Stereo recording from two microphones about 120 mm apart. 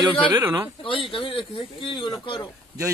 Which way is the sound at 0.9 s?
45° left (ahead or behind).